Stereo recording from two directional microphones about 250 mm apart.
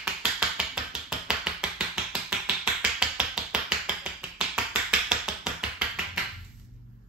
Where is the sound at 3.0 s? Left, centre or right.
Centre.